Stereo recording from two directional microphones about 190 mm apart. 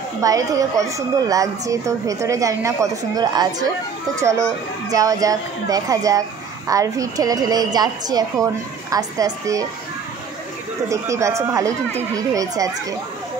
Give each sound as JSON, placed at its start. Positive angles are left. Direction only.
{"t": 0.2, "sound": "a woman's voice", "side_deg": -20}
{"t": 10.9, "sound": "a woman's voice", "side_deg": -15}